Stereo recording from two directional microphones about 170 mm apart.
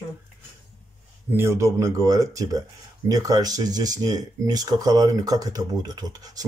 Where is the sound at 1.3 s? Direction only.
15° right (ahead or behind).